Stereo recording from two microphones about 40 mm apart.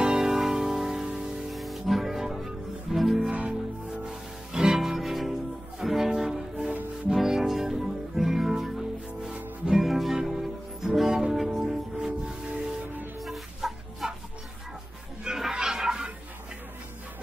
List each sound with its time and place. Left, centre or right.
0.0 s music: centre
1.5 s music: centre
3.2 s music: right
4.1 s music: centre
13.2 s chicken: centre
15.5 s a sound: centre